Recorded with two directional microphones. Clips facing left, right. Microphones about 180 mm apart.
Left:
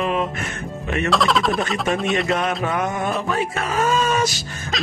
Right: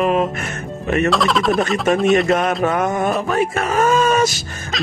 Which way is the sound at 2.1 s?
50° right (ahead or behind).